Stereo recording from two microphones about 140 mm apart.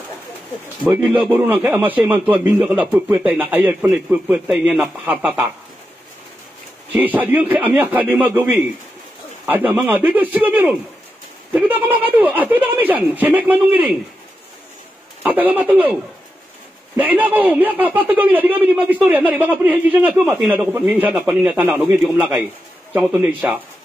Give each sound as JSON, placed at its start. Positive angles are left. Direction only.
{"t": 0.8, "sound": "a man's voice", "side_deg": -15}
{"t": 6.9, "sound": "a man's voice", "side_deg": -10}
{"t": 15.2, "sound": "a man's voice", "side_deg": -15}